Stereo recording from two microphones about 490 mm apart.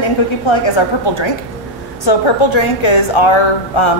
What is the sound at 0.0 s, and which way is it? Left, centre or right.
A woman's voice, left.